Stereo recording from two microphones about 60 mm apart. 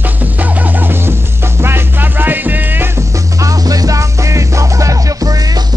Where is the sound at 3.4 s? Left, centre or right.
Right.